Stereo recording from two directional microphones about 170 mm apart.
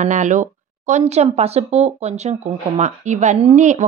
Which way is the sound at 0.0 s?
45° right (ahead or behind).